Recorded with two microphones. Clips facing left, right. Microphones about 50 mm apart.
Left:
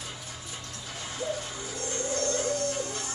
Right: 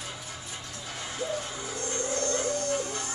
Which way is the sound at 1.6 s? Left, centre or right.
Right.